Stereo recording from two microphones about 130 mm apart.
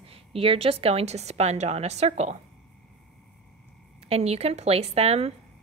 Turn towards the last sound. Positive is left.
turn(degrees=-50)  # may be behind; listen again after turning